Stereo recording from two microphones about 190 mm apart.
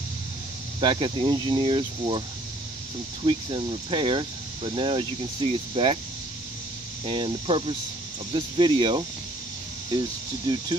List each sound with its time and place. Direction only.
0.7 s speech: 25° right (ahead or behind)
3.3 s speech: 25° right (ahead or behind)
7.1 s speech: 25° right (ahead or behind)